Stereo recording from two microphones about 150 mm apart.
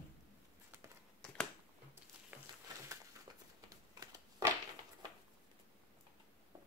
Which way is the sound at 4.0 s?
25° right (ahead or behind).